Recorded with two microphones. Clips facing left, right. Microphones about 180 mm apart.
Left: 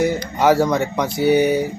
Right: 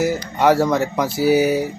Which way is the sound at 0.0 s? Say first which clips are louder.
Even; centre (ahead or behind).